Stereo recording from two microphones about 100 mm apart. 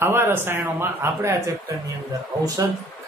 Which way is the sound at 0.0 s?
20° right (ahead or behind).